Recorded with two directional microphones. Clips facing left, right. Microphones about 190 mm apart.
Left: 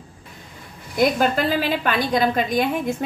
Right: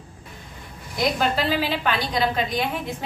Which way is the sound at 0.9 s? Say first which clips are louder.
Left 4 dB; 50° left (ahead or behind).